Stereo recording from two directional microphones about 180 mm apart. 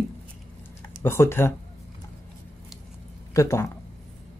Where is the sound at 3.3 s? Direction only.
15° left (ahead or behind).